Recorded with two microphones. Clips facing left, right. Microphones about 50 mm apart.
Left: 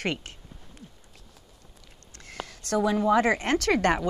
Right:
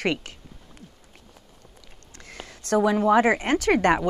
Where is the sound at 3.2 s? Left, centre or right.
Right.